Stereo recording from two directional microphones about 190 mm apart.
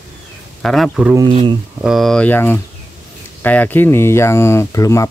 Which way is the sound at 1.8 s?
Centre (ahead or behind).